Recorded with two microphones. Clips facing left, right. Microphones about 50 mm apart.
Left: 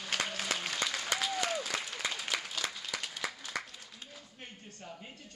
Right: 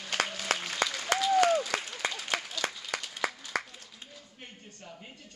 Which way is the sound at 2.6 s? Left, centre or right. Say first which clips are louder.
Right 5 dB; right.